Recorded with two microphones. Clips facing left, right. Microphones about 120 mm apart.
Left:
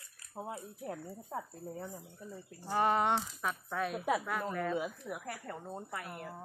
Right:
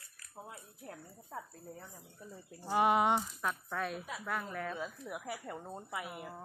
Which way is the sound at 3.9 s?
80° left.